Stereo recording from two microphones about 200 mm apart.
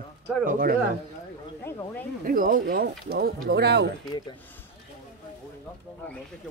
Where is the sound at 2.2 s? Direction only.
45° right (ahead or behind).